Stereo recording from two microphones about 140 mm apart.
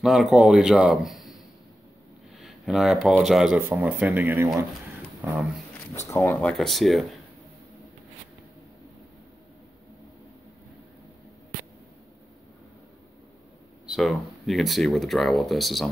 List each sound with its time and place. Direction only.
0.0 s speech: centre (ahead or behind)
2.4 s speech: centre (ahead or behind)
3.5 s speech: 15° right (ahead or behind)
6.0 s speech: 15° left (ahead or behind)
6.4 s speech: 5° left (ahead or behind)
13.8 s speech: centre (ahead or behind)